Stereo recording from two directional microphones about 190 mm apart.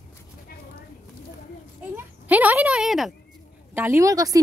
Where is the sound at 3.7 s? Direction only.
15° right (ahead or behind).